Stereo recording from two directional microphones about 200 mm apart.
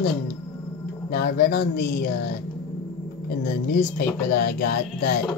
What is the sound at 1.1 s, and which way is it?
Speech, 50° left (ahead or behind).